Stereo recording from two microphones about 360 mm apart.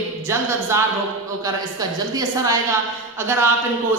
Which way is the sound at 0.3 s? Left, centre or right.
Centre.